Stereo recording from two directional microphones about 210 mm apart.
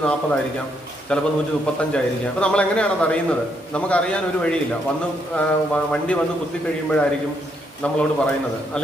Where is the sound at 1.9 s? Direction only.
5° left (ahead or behind).